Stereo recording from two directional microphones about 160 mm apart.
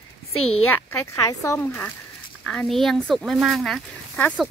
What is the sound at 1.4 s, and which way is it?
Speech, 15° left (ahead or behind).